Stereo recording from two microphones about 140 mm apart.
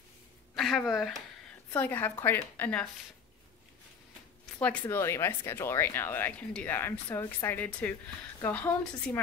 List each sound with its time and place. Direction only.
0.6 s speech: centre (ahead or behind)
1.7 s speech: 15° left (ahead or behind)
4.6 s speech: 15° left (ahead or behind)